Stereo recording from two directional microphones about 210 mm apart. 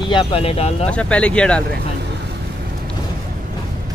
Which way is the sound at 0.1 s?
25° left (ahead or behind).